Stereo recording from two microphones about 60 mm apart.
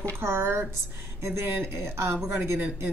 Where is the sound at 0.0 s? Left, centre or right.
Right.